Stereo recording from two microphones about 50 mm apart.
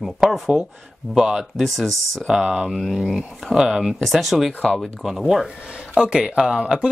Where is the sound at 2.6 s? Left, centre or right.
Centre.